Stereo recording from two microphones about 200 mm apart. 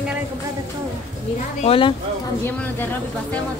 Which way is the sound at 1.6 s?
25° left (ahead or behind).